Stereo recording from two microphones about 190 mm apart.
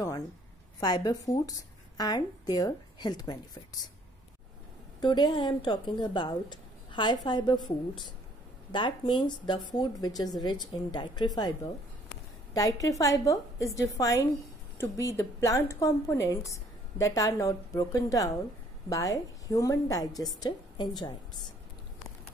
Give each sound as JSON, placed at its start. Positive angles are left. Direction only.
{"t": 0.7, "sound": "speech", "side_deg": 20}
{"t": 5.0, "sound": "speech", "side_deg": 25}
{"t": 8.7, "sound": "a woman's voice", "side_deg": 25}